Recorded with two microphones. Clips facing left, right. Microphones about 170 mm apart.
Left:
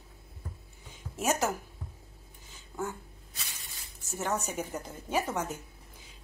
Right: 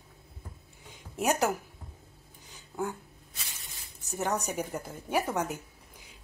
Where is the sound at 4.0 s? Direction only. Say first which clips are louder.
Right 2 dB; 15° right (ahead or behind).